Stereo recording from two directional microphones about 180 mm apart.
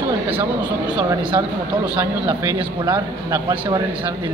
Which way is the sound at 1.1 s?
25° right (ahead or behind).